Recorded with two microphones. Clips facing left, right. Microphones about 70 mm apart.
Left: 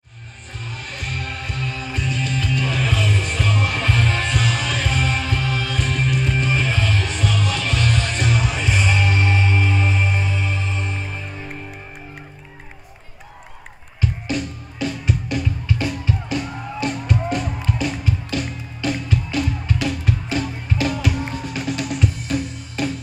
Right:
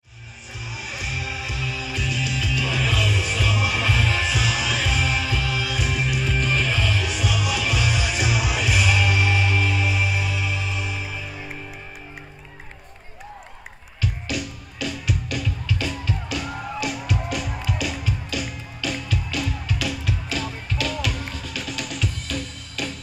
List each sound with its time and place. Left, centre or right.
0.7 s music: centre
6.4 s music: centre
6.7 s music: centre
14.3 s music: centre
21.4 s music: left
21.6 s drum: centre
22.4 s music: centre